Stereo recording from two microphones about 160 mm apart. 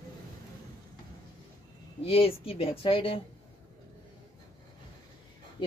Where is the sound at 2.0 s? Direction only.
35° left (ahead or behind).